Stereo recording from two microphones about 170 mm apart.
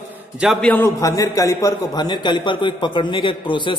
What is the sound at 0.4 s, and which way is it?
A man's voice, centre (ahead or behind).